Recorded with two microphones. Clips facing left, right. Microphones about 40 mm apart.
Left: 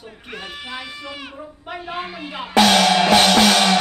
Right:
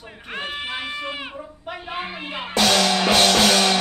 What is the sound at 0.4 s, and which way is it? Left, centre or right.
Goat, right.